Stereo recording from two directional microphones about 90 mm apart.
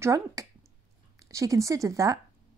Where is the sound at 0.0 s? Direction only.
35° right (ahead or behind).